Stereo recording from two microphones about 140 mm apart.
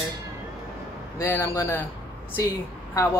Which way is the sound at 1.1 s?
20° left (ahead or behind).